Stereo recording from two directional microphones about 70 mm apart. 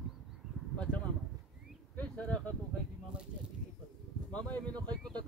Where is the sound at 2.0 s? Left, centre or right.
Centre.